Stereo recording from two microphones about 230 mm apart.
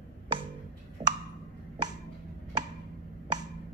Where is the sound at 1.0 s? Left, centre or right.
Right.